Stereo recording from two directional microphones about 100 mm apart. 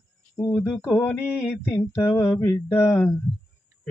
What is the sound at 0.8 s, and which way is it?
Speech, 25° left (ahead or behind).